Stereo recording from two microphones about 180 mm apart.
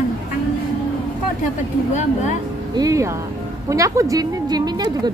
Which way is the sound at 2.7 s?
20° right (ahead or behind).